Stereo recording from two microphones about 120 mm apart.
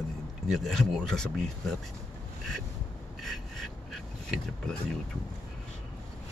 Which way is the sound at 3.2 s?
Centre (ahead or behind).